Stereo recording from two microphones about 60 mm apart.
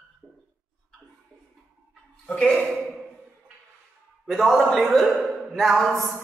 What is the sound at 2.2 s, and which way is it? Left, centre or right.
Speech, centre.